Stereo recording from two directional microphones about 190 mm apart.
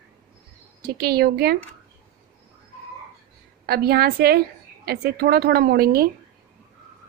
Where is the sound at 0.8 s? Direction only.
55° right (ahead or behind).